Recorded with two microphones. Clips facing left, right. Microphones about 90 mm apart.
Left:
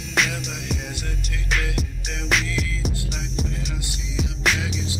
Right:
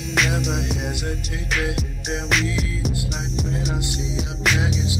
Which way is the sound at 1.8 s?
Centre (ahead or behind).